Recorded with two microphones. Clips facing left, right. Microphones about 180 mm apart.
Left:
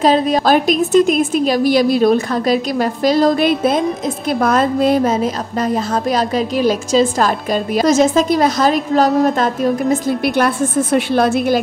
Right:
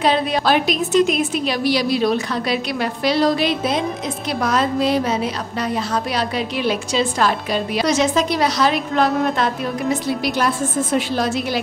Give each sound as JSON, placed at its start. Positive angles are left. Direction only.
{"t": 0.0, "sound": "a woman's voice", "side_deg": 40}